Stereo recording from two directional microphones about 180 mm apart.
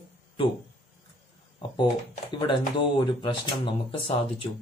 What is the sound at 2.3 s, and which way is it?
Speech, 30° left (ahead or behind).